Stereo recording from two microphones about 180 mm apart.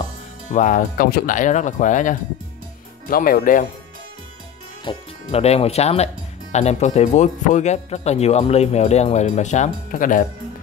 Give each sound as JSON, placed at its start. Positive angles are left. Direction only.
{"t": 0.5, "sound": "speech", "side_deg": 45}
{"t": 4.8, "sound": "speech", "side_deg": 35}